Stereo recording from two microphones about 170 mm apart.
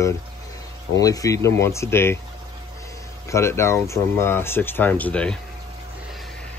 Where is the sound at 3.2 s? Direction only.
15° left (ahead or behind).